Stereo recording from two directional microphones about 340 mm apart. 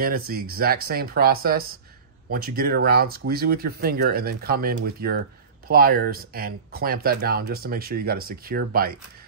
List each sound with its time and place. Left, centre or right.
0.3 s speech: right